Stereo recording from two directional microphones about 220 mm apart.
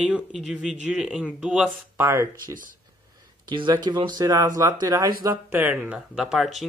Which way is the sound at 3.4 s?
20° right (ahead or behind).